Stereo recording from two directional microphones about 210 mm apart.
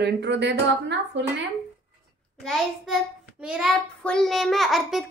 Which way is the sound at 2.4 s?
Centre (ahead or behind).